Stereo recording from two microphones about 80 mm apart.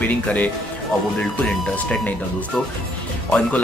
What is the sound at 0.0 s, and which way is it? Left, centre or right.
Speech, centre.